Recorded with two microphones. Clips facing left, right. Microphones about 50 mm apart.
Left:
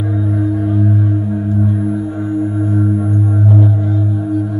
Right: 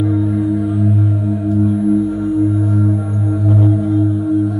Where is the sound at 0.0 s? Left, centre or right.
Centre.